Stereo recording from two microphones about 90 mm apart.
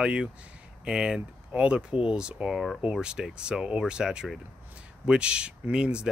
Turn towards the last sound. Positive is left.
turn(degrees=-10)  # may be behind; listen again after turning